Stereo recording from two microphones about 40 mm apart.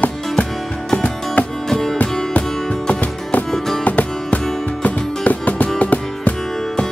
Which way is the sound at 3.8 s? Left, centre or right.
Left.